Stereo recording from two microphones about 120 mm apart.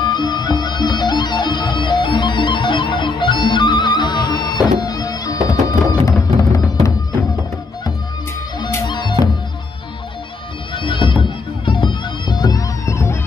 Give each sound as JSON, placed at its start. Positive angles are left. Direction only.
{"t": 0.0, "sound": "music", "side_deg": 35}
{"t": 8.8, "sound": "music", "side_deg": 40}
{"t": 10.7, "sound": "bagpipes", "side_deg": 45}
{"t": 12.3, "sound": "music", "side_deg": 35}